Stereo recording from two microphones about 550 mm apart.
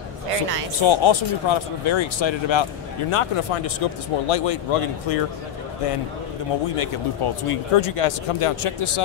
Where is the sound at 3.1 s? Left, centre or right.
Left.